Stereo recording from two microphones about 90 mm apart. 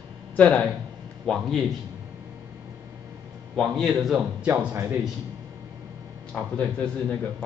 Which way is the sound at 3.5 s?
Centre (ahead or behind).